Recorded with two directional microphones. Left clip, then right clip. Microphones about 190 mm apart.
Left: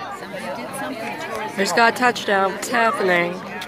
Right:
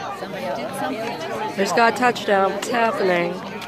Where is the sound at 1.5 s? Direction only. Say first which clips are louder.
Left 1 dB; centre (ahead or behind).